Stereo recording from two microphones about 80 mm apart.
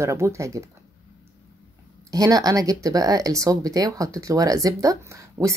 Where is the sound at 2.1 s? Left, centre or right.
Right.